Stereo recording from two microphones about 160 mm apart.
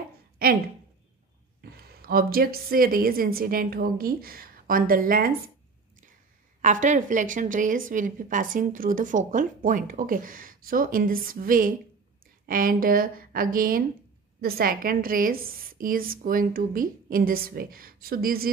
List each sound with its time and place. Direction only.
1.6 s a woman's voice: 70° right (ahead or behind)
6.6 s a woman's voice: 50° right (ahead or behind); by 18.5 s 65° right (ahead or behind)